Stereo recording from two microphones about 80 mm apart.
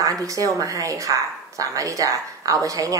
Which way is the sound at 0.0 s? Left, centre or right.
Right.